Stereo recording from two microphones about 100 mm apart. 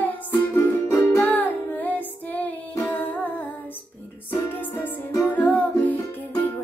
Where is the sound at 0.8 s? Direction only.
30° left (ahead or behind).